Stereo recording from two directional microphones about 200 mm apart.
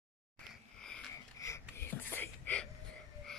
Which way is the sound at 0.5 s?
5° left (ahead or behind).